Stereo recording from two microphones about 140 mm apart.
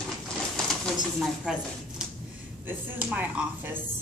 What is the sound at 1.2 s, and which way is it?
Speech, 5° right (ahead or behind).